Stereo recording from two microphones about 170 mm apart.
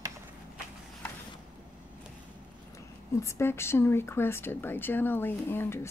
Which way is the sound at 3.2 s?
15° left (ahead or behind).